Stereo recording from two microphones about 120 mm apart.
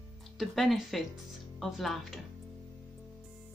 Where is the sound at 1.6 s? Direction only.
Centre (ahead or behind).